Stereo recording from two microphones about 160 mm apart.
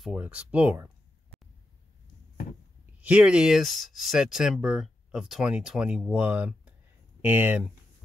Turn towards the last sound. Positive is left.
turn(degrees=-10)  # may be behind; listen again after turning